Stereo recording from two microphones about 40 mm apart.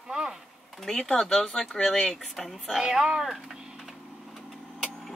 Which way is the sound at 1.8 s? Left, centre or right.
Left.